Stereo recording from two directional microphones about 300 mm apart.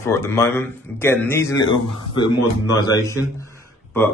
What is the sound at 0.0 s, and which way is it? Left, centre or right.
Speech, centre.